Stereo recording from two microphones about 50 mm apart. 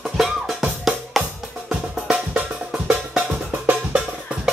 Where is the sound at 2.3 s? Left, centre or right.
Right.